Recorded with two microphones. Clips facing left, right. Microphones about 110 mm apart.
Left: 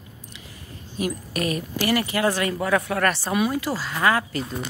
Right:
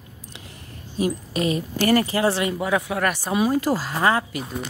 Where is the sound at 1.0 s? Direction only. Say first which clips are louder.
Right 3 dB; 25° right (ahead or behind).